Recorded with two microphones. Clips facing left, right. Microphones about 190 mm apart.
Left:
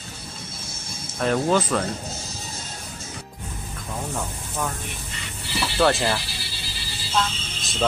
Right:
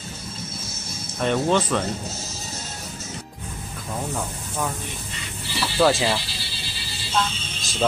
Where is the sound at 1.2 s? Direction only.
Centre (ahead or behind).